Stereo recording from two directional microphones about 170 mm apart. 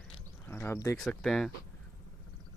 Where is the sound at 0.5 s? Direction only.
15° left (ahead or behind).